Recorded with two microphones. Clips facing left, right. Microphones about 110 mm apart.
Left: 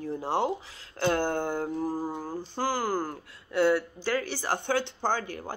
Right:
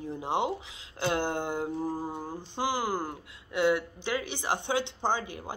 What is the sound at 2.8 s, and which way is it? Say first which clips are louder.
Speech: left 2 dB; 20° right (ahead or behind).